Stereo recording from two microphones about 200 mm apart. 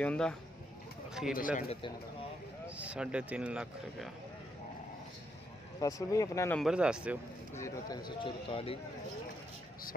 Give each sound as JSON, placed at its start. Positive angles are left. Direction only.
{"t": 0.0, "sound": "speech", "side_deg": 5}
{"t": 1.7, "sound": "speech", "side_deg": 25}
{"t": 2.8, "sound": "speech", "side_deg": -5}
{"t": 5.8, "sound": "speech", "side_deg": 15}
{"t": 6.6, "sound": "speech", "side_deg": -5}
{"t": 7.5, "sound": "speech", "side_deg": 15}